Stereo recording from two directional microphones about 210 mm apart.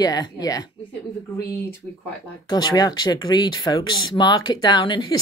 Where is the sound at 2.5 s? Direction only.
20° left (ahead or behind).